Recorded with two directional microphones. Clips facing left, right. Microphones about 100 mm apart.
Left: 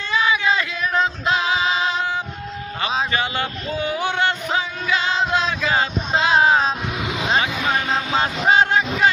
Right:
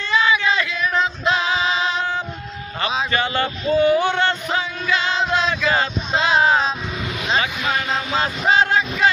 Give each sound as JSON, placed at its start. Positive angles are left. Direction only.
{"t": 0.1, "sound": "female singing", "side_deg": 10}
{"t": 1.2, "sound": "music", "side_deg": 5}
{"t": 3.1, "sound": "a sound", "side_deg": 10}
{"t": 3.7, "sound": "music", "side_deg": 10}
{"t": 5.3, "sound": "a sound", "side_deg": 10}
{"t": 7.3, "sound": "vehicle", "side_deg": 20}